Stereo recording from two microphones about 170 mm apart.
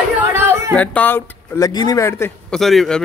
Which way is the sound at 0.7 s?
10° left (ahead or behind).